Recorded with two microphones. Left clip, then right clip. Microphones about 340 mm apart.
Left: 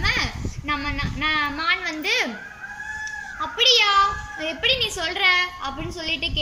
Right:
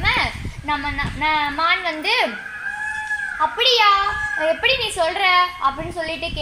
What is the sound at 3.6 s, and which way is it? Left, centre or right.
A woman's voice, centre.